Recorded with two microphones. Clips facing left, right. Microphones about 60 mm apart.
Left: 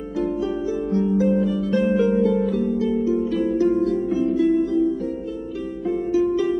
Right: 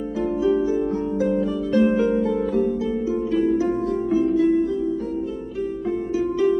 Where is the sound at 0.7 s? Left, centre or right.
Centre.